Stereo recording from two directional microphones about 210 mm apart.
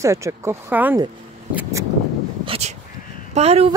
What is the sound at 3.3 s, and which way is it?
Speech, 30° right (ahead or behind).